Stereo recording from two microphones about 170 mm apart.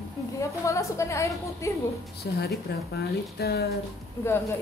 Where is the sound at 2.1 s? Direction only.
70° left (ahead or behind).